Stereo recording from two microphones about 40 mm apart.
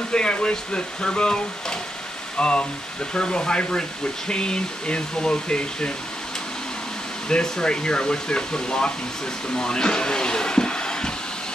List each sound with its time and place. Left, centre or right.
0.1 s speech: left
7.2 s speech: centre